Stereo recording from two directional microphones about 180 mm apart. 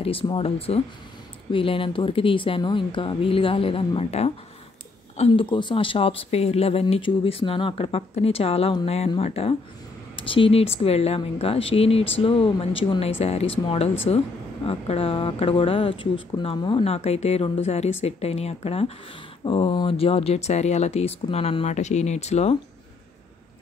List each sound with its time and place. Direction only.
0.0 s speech: 30° left (ahead or behind)